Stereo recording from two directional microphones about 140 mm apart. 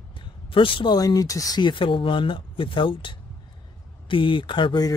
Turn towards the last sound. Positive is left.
turn(degrees=30)  # may be behind; listen again after turning